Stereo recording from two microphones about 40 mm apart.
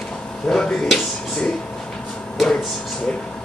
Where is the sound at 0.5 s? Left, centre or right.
Centre.